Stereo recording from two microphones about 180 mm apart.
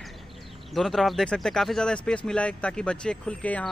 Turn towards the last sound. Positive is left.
turn(degrees=5)  # may be behind; listen again after turning